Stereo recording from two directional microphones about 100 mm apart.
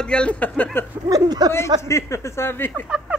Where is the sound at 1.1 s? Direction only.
40° right (ahead or behind).